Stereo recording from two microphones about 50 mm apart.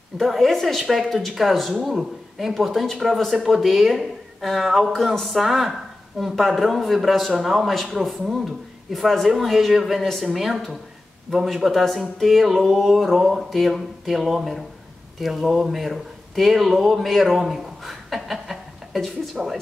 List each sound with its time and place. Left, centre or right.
0.2 s a woman's voice: centre